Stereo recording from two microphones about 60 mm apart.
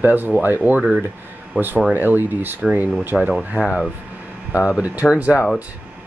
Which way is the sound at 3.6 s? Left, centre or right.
Centre.